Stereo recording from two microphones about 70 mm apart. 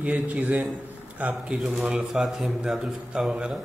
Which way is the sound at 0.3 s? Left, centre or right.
Right.